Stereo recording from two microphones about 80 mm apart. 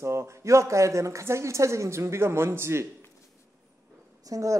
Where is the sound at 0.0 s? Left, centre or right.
Right.